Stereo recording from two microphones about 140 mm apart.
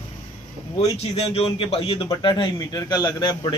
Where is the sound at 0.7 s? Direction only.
50° left (ahead or behind).